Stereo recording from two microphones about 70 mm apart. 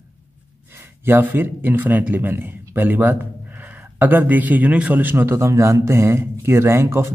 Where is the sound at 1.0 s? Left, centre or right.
Right.